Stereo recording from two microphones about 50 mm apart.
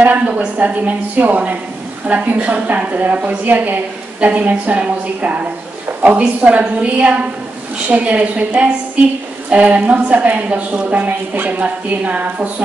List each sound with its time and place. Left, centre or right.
0.6 s a woman's voice: right